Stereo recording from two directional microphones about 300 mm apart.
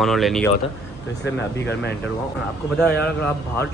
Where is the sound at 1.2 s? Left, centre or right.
Left.